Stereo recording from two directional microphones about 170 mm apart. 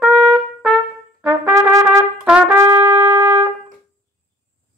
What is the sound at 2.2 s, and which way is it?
Trumpet, 5° right (ahead or behind).